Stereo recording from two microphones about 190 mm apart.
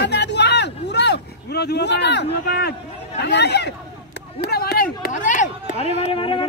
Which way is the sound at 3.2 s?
60° left (ahead or behind).